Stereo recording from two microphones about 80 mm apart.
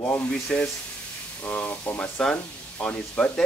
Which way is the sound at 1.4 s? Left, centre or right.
Left.